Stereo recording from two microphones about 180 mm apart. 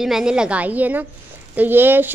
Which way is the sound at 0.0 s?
5° right (ahead or behind).